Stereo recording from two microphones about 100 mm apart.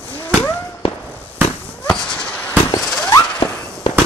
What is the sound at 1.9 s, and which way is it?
Fireworks, 10° left (ahead or behind).